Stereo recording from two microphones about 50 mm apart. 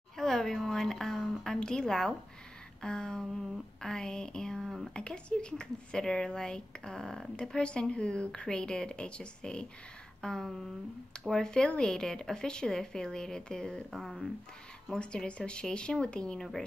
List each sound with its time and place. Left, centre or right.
0.2 s a sound: centre
2.8 s speech: centre
13.8 s speech: centre
15.0 s speech: left